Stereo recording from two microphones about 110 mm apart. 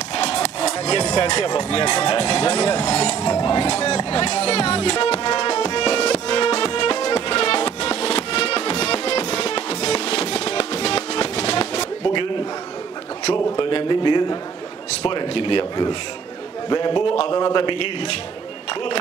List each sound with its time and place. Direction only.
0.3 s music: 80° left
1.6 s speech: 70° left (ahead or behind)
3.4 s speech: 70° left (ahead or behind)
5.0 s music: 75° left (ahead or behind)
12.0 s a sound: 50° left (ahead or behind)
13.6 s a sound: 50° left (ahead or behind)
15.0 s speech: 55° left (ahead or behind)
16.6 s a man's voice: 40° left (ahead or behind)